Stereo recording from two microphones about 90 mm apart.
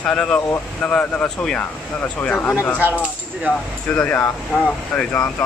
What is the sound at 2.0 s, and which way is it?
Speech, 20° left (ahead or behind).